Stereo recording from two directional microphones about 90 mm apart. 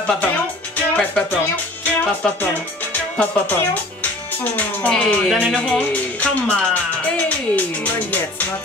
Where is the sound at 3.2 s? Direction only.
20° left (ahead or behind).